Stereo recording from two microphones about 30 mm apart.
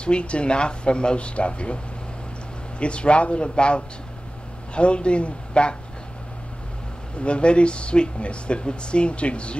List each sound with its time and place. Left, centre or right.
0.0 s speech: left
2.8 s speech: left
7.2 s speech: left